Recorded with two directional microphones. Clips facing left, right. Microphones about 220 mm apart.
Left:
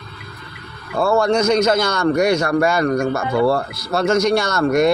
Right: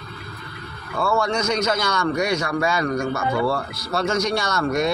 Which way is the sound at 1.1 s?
50° left (ahead or behind).